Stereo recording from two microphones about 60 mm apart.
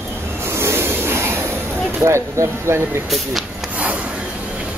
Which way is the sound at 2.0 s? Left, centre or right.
Right.